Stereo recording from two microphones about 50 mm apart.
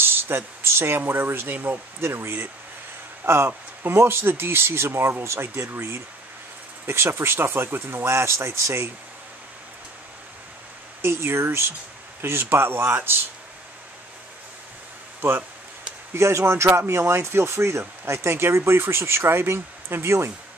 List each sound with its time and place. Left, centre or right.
0.0 s a sound: right
0.6 s speech: right
2.0 s speech: right
5.2 s speech: right
5.7 s speech: right
8.1 s speech: right
11.0 s speech: right
16.2 s speech: right